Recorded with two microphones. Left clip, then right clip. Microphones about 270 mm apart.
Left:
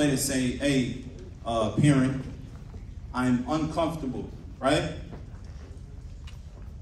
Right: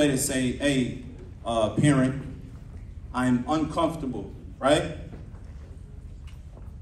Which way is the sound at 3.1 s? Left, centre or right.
Centre.